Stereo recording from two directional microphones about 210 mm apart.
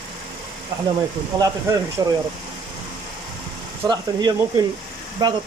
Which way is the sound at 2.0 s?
20° right (ahead or behind).